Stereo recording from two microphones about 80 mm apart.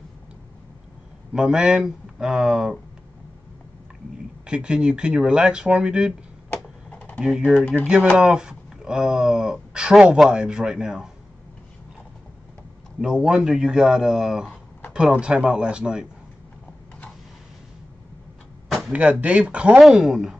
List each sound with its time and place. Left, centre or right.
1.3 s speech: centre
4.5 s speech: centre
6.5 s a sound: centre
7.3 s speech: centre
13.0 s speech: centre
18.9 s speech: centre
19.8 s speech: centre